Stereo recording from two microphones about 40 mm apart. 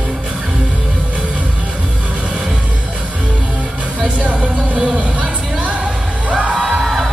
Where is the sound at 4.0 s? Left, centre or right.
Right.